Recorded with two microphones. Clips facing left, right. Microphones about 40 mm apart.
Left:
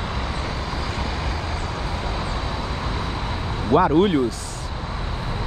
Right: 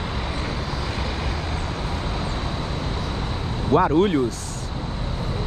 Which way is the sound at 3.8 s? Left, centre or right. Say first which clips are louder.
Left 1 dB; left.